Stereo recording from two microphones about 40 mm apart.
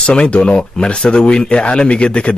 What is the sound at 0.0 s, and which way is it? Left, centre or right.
Speech, left.